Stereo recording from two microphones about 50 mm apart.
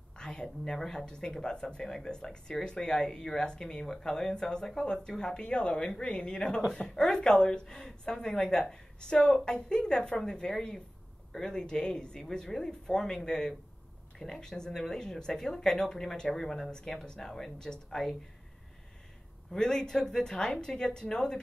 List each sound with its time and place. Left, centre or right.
0.2 s a woman's voice: centre
6.3 s speech: centre
19.5 s speech: centre